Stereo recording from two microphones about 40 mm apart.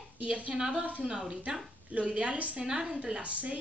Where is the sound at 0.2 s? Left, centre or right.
Right; by 1.4 s centre.